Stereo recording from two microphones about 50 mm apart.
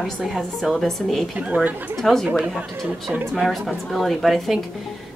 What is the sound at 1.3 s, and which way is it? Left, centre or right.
Speech, right.